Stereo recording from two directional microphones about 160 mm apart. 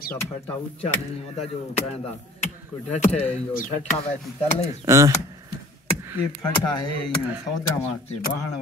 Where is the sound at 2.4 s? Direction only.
45° left (ahead or behind).